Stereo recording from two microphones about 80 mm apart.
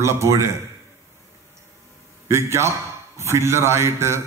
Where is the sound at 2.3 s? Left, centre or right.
Right.